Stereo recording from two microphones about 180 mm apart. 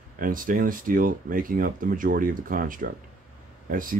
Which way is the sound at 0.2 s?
50° right (ahead or behind).